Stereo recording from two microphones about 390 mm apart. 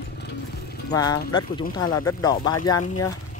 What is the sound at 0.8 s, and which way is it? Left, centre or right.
Speech, centre.